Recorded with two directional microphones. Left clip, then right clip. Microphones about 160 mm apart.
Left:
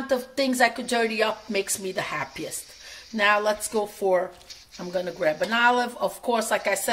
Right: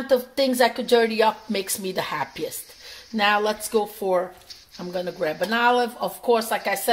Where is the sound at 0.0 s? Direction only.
30° right (ahead or behind).